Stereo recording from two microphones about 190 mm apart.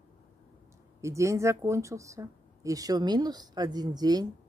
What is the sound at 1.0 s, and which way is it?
A woman's voice, 15° right (ahead or behind).